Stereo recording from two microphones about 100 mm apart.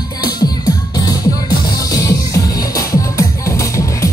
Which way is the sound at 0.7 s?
40° left (ahead or behind).